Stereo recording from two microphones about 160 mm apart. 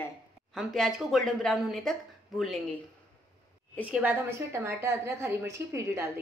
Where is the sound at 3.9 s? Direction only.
10° right (ahead or behind).